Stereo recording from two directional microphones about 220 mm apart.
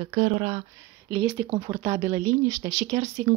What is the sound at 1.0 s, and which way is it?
A woman's voice, 10° right (ahead or behind).